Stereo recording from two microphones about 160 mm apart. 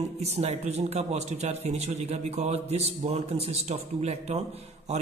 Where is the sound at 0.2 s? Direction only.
40° right (ahead or behind).